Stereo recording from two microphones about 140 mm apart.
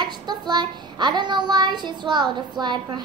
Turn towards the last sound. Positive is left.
turn(degrees=-30)  # may be behind; listen again after turning